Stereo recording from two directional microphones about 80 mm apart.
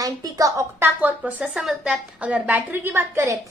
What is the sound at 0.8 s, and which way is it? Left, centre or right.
Speech, right.